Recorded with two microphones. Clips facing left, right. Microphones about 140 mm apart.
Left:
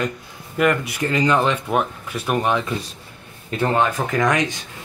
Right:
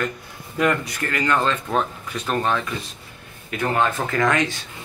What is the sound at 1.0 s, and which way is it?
Speech, 20° left (ahead or behind).